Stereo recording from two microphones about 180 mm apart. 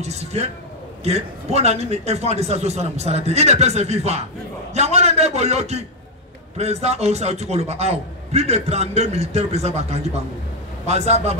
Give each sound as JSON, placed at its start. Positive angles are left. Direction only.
{"t": 0.0, "sound": "a man's voice", "side_deg": -35}